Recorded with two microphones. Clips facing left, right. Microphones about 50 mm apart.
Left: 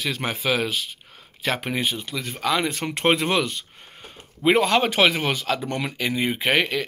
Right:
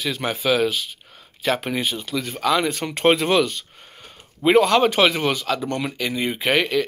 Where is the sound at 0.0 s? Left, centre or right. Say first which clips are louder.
Right 2 dB; left.